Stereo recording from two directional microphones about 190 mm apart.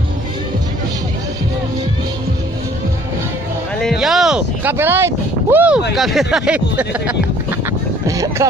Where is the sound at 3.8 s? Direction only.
Centre (ahead or behind).